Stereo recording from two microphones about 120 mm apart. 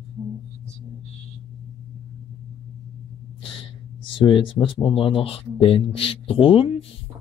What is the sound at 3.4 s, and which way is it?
Gasp, 50° left (ahead or behind).